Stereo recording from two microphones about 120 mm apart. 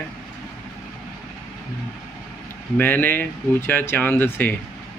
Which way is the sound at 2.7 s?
15° left (ahead or behind).